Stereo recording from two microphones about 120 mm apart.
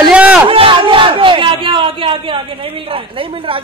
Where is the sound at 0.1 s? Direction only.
10° right (ahead or behind).